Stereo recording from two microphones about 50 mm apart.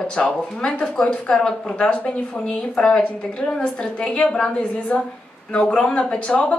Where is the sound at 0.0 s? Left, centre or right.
Centre.